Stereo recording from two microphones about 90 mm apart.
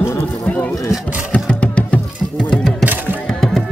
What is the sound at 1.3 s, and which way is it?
Music, 15° left (ahead or behind).